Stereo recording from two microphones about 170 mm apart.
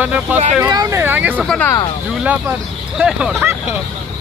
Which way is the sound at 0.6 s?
20° right (ahead or behind).